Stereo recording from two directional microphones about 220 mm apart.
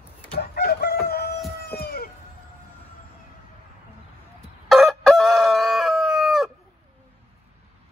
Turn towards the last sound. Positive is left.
turn(degrees=0)  # may be behind; listen again after turning